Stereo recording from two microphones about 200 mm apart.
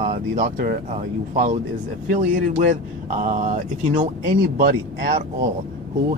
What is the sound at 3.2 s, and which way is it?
Speech, 40° right (ahead or behind).